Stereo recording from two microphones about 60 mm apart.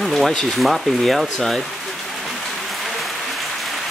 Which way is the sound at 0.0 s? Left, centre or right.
Centre.